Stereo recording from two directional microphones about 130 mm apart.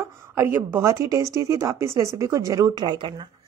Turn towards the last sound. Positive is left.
turn(degrees=-35)  # may be behind; listen again after turning